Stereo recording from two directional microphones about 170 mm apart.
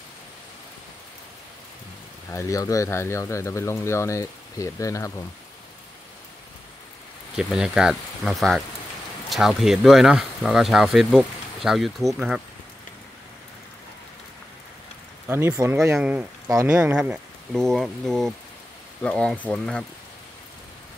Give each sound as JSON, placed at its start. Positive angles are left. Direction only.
{"t": 2.3, "sound": "speech", "side_deg": 20}
{"t": 7.3, "sound": "speech", "side_deg": -5}
{"t": 15.2, "sound": "speech", "side_deg": -10}